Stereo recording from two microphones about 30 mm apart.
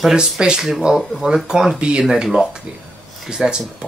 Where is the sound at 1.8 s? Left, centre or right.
Right.